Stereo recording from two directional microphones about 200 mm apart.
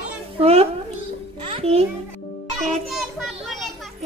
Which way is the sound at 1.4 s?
30° right (ahead or behind).